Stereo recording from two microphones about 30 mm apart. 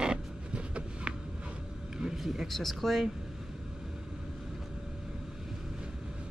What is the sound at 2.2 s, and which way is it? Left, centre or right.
Speech, centre.